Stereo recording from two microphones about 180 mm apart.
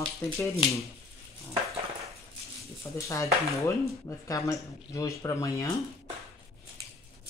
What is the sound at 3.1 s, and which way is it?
Speech, 15° left (ahead or behind).